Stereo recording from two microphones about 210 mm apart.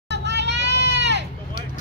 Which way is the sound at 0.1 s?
55° right (ahead or behind).